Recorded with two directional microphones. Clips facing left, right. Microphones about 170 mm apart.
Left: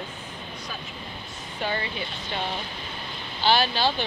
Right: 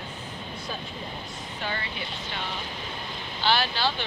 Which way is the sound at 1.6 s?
25° left (ahead or behind).